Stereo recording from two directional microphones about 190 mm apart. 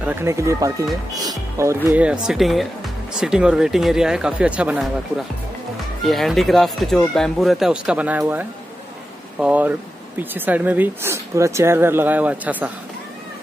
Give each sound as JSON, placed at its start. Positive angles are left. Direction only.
{"t": 0.0, "sound": "speech", "side_deg": -10}
{"t": 6.0, "sound": "speech", "side_deg": 0}